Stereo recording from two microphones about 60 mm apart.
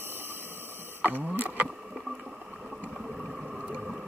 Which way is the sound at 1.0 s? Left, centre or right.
Right.